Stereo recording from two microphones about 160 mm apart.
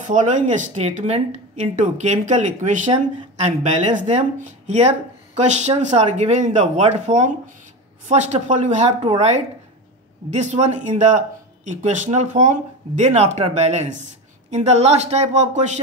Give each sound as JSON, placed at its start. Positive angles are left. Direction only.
{"t": 0.1, "sound": "speech", "side_deg": -50}
{"t": 9.0, "sound": "speech", "side_deg": -40}